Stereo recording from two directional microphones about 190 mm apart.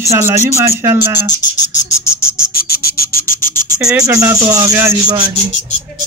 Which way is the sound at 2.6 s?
55° left (ahead or behind).